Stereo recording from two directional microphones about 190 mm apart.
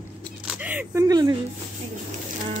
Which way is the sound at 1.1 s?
20° right (ahead or behind).